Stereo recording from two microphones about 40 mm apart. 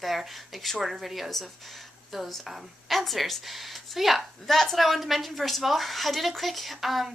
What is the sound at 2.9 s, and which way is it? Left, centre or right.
A woman's voice, centre.